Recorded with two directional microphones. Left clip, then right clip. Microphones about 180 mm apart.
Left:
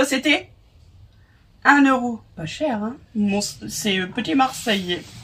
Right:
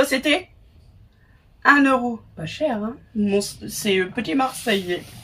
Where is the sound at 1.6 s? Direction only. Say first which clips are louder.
Even; 15° left (ahead or behind).